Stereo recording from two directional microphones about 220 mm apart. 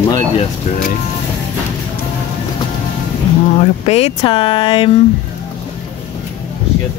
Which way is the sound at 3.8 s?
30° left (ahead or behind).